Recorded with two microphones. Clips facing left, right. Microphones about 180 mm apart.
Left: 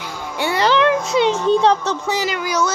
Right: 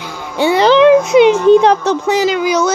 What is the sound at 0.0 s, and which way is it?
Music, 20° right (ahead or behind).